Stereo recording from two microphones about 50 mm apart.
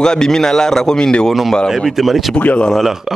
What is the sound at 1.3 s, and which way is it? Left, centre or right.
Speech, centre.